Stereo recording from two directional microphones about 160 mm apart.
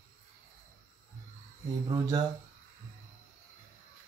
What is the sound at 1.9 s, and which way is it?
Speech, 25° right (ahead or behind).